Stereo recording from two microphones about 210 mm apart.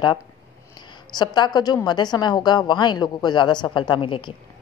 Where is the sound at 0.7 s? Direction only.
20° left (ahead or behind).